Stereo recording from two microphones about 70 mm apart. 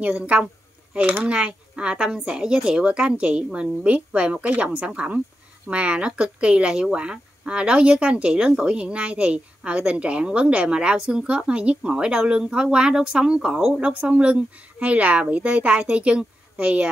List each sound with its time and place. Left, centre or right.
0.3 s speech: centre